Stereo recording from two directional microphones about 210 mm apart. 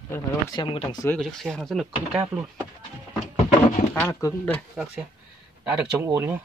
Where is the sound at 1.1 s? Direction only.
Centre (ahead or behind).